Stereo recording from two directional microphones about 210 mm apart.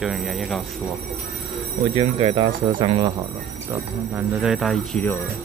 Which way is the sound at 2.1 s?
30° right (ahead or behind).